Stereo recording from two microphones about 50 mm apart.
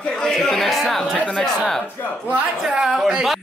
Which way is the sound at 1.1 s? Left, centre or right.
Centre.